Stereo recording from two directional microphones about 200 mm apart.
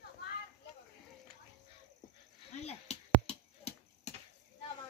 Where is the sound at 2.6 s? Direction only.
30° left (ahead or behind).